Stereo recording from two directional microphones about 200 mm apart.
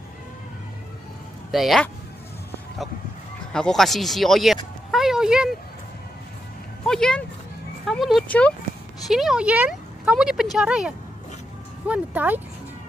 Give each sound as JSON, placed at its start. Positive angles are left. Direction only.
{"t": 1.5, "sound": "speech", "side_deg": 0}
{"t": 3.5, "sound": "speech", "side_deg": 0}
{"t": 4.9, "sound": "a sound", "side_deg": 0}
{"t": 6.9, "sound": "speech", "side_deg": 5}
{"t": 11.9, "sound": "speech", "side_deg": -10}